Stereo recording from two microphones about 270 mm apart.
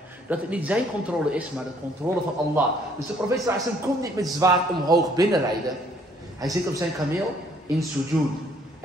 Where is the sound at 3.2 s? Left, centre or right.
Centre.